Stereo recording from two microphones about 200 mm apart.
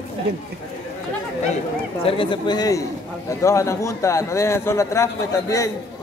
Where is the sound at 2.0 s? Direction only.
25° left (ahead or behind).